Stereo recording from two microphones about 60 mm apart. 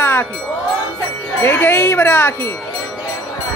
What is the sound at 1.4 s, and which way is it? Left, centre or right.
Speech, left.